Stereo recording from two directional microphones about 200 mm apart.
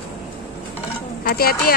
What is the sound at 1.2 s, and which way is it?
Speech, 50° left (ahead or behind).